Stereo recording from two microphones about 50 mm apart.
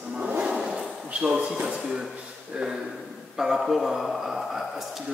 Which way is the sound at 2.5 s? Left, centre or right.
Centre.